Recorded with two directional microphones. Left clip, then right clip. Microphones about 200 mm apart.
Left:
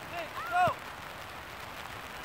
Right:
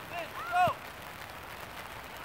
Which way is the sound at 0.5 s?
40° right (ahead or behind).